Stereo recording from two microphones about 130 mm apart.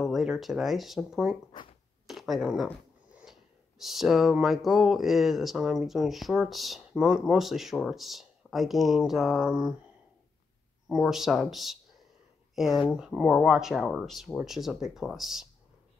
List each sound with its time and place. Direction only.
0.0 s speech: centre (ahead or behind)
1.5 s a sound: 40° left (ahead or behind)
2.0 s speech: centre (ahead or behind)
10.9 s speech: centre (ahead or behind)